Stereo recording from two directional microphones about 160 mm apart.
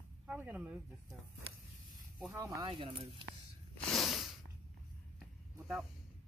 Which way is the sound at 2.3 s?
20° right (ahead or behind).